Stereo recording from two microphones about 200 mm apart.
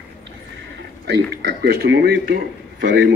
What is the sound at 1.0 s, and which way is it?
Speech, 55° right (ahead or behind).